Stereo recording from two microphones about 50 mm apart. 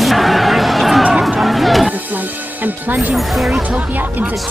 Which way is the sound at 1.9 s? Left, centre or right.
Right.